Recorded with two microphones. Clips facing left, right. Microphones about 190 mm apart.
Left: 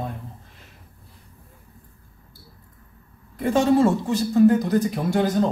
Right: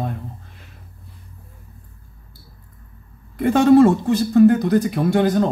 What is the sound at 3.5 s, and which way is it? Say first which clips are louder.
Speech: right 6 dB; 60° right (ahead or behind).